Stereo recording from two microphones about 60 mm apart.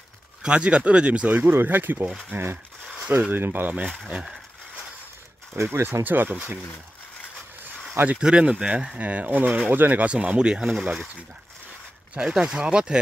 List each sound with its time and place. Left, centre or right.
0.4 s speech: centre; by 2.6 s right
3.0 s speech: right
4.1 s speech: centre
5.6 s speech: right
7.9 s speech: right
8.2 s speech: centre
12.1 s speech: centre